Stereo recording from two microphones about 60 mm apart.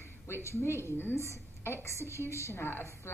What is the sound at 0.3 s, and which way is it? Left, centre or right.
A woman's voice, left.